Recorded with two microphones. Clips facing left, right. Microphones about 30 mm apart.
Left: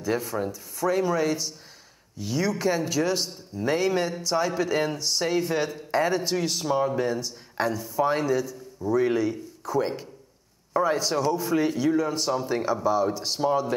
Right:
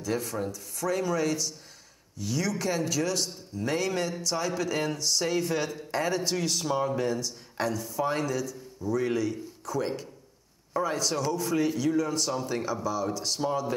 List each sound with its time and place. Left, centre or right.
0.2 s speech: centre